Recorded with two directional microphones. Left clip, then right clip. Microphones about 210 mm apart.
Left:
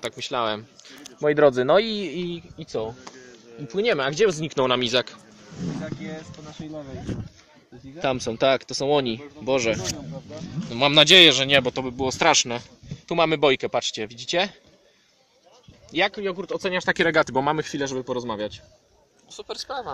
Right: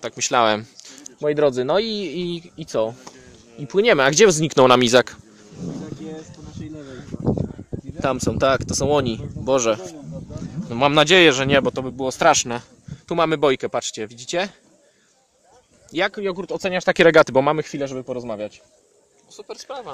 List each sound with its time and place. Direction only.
0.2 s speech: 45° right (ahead or behind)
1.0 s speech: 5° right (ahead or behind)
2.3 s speech: 45° right (ahead or behind)
8.0 s speech: 15° right (ahead or behind)
16.2 s speech: 40° right (ahead or behind); by 19.6 s 10° right (ahead or behind)